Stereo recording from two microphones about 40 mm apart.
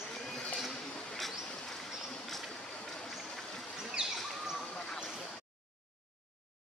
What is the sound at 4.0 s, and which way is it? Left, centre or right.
Bird, right.